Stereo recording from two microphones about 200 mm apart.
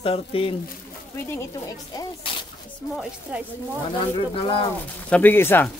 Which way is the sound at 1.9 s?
20° left (ahead or behind).